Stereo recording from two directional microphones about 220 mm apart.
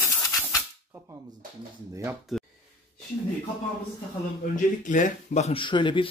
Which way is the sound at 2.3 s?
Centre (ahead or behind).